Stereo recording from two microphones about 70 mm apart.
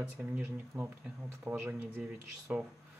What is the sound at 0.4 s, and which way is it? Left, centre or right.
Speech, right.